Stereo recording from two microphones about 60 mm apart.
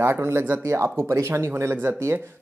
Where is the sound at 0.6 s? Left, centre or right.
Right.